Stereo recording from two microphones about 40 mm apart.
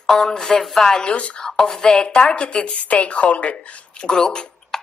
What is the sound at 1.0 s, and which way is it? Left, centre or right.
Speech, left.